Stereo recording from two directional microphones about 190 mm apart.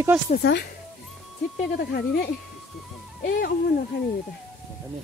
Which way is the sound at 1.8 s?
50° left (ahead or behind).